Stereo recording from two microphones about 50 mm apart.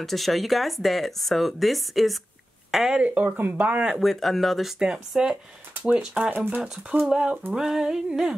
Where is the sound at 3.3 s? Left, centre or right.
Right.